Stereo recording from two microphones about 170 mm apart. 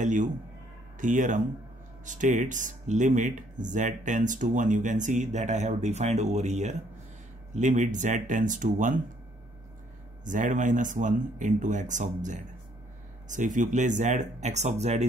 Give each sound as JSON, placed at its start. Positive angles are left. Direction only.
{"t": 0.0, "sound": "speech", "side_deg": -50}
{"t": 10.2, "sound": "speech", "side_deg": -50}